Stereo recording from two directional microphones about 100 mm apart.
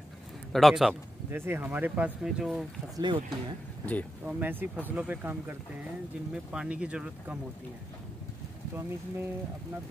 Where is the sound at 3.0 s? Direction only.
50° right (ahead or behind).